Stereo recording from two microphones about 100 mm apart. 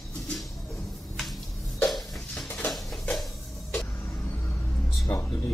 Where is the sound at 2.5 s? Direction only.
20° left (ahead or behind).